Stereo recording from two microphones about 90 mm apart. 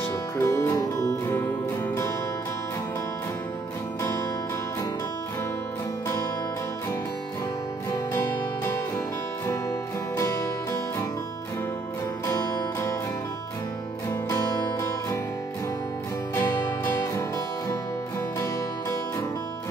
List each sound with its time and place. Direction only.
0.4 s music: 30° left (ahead or behind)
9.7 s music: 30° left (ahead or behind)
14.3 s music: 30° left (ahead or behind)
16.3 s music: 35° left (ahead or behind)